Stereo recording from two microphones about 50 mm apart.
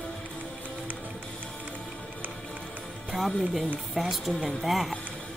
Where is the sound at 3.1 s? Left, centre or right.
Centre.